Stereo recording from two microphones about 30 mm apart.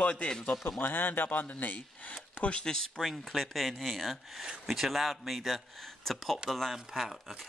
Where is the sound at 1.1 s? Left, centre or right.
Left.